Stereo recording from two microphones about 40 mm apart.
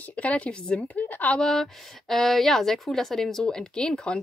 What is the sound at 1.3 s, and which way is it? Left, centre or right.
A woman's voice, centre.